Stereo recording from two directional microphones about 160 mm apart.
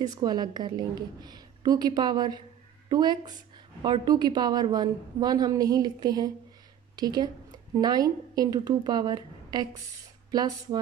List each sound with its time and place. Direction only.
0.0 s a woman's voice: 25° right (ahead or behind)